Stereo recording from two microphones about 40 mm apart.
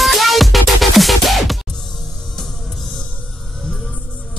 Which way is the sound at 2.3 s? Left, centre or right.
Centre.